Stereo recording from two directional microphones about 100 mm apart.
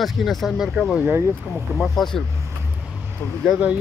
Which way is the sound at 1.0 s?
25° right (ahead or behind).